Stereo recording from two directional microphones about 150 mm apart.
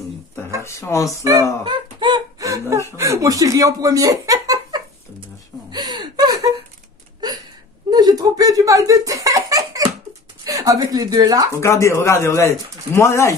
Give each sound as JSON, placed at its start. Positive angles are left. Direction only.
{"t": 0.7, "sound": "speech", "side_deg": 20}
{"t": 1.2, "sound": "speech", "side_deg": -20}
{"t": 1.6, "sound": "a sound", "side_deg": -35}
{"t": 3.0, "sound": "speech", "side_deg": -20}
{"t": 5.7, "sound": "a sound", "side_deg": -30}
{"t": 10.4, "sound": "speech", "side_deg": -20}
{"t": 11.5, "sound": "speech", "side_deg": 20}